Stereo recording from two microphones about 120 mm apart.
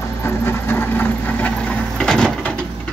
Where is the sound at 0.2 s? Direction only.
20° left (ahead or behind).